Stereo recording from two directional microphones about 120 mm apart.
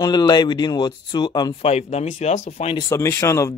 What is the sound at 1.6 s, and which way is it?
Speech, 65° left (ahead or behind).